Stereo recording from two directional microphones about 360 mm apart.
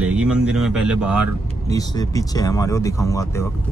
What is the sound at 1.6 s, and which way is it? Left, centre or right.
Speech, centre.